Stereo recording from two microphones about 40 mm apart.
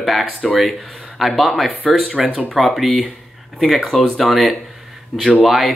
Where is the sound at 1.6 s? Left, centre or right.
Left.